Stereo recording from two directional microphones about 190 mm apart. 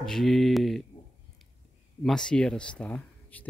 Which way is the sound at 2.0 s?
5° left (ahead or behind).